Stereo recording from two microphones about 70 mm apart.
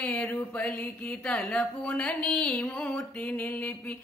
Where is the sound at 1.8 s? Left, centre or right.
Centre.